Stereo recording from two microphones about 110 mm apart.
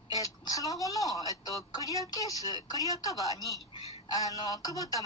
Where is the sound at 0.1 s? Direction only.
35° left (ahead or behind).